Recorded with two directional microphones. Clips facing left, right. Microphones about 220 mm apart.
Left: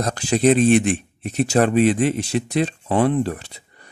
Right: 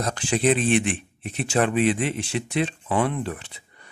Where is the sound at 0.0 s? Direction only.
40° left (ahead or behind).